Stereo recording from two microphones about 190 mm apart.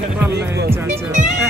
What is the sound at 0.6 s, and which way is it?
Music, 10° right (ahead or behind).